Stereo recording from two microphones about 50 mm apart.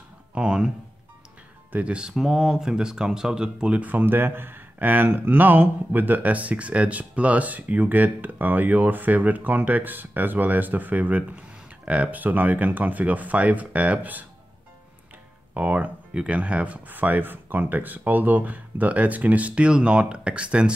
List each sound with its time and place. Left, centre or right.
0.3 s a sound: centre
1.7 s speech: right
4.0 s speech: right
15.5 s speech: right